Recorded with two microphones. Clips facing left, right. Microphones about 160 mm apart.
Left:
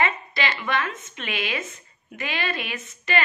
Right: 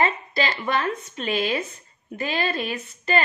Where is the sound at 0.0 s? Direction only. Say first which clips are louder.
Right 2 dB; 35° right (ahead or behind).